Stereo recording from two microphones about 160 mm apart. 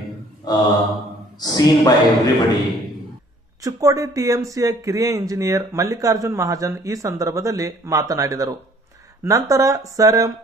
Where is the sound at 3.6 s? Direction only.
20° right (ahead or behind).